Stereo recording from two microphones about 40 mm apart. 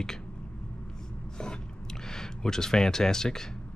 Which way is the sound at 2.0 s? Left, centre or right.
Centre.